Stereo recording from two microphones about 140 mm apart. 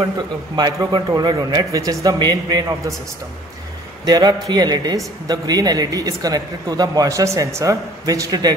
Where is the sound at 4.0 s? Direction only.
30° right (ahead or behind).